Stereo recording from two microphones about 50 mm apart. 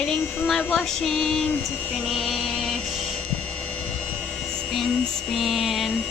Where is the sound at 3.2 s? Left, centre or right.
Left.